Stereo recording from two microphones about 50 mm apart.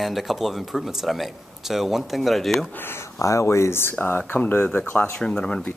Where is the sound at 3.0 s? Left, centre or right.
Left.